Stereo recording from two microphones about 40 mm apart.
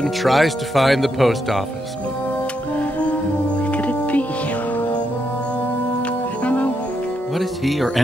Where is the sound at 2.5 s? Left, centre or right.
Left.